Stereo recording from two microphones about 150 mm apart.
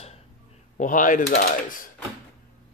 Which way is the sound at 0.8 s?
60° left (ahead or behind).